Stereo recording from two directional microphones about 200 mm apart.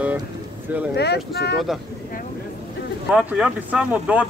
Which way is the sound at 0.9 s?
55° left (ahead or behind).